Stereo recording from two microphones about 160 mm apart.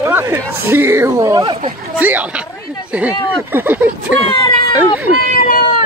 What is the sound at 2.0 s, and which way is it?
Speech, 10° right (ahead or behind).